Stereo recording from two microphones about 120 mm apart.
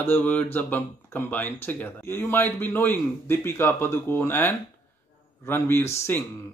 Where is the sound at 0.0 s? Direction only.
15° left (ahead or behind).